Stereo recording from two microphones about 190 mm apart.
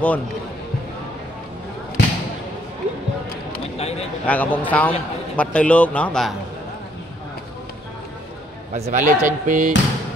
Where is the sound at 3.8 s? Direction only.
35° left (ahead or behind).